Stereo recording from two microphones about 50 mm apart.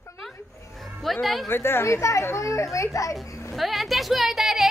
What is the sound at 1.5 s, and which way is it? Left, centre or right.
A woman's voice, left.